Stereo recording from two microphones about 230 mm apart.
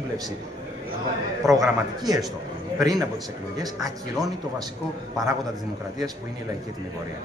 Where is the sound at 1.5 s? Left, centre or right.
Centre.